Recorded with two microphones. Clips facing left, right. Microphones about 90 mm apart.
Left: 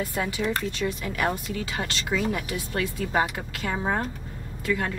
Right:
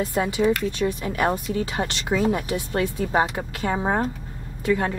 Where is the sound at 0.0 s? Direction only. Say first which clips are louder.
Right 6 dB; 25° right (ahead or behind).